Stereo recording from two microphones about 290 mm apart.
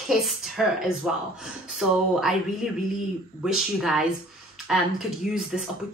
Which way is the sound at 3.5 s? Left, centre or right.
Centre.